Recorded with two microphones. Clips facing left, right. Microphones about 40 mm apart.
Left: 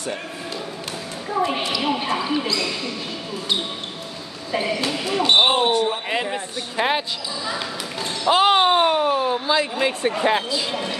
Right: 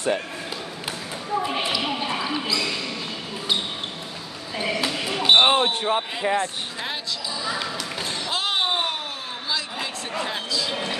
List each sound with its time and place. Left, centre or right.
1.3 s a sound: centre
1.7 s basketball bounce: centre
4.6 s basketball bounce: centre
5.6 s basketball bounce: right
6.8 s speech: left
7.4 s speech: centre
8.3 s speech: left
10.7 s speech: centre